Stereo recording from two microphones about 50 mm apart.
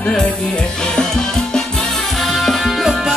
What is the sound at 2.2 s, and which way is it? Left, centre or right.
Music, centre.